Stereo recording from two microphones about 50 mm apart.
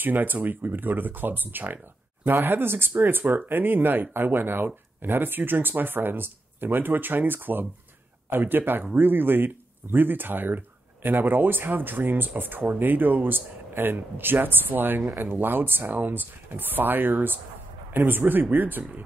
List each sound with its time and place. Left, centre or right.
0.0 s speech: right